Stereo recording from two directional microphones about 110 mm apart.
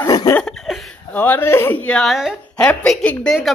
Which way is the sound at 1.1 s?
15° left (ahead or behind).